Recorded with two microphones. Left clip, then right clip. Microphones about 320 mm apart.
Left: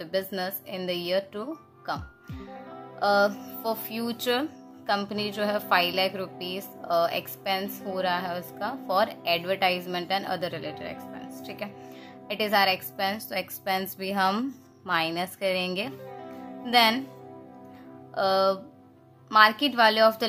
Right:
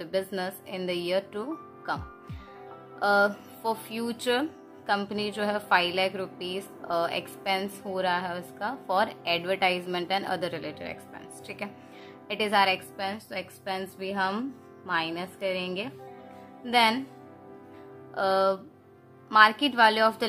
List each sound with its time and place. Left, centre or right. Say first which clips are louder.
0.0 s a woman's voice: left 1 dB; centre
18.1 s speech: left 1 dB; centre